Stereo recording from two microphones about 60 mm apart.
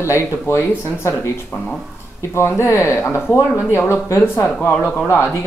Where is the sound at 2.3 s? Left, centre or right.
Left.